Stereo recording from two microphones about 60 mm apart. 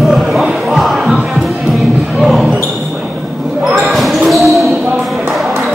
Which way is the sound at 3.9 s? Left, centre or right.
Centre.